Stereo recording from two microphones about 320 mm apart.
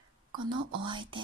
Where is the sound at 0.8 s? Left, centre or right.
Centre.